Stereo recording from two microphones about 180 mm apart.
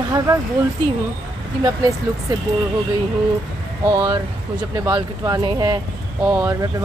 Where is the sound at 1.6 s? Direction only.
20° right (ahead or behind).